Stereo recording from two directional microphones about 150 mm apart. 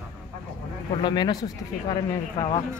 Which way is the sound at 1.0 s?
30° left (ahead or behind).